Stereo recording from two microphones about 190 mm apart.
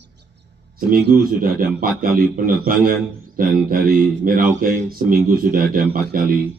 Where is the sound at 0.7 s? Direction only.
50° right (ahead or behind).